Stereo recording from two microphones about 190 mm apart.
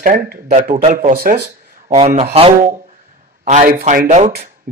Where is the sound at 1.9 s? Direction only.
30° right (ahead or behind).